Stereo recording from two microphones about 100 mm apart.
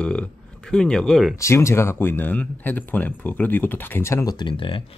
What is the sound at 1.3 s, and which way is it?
Speech, 30° left (ahead or behind).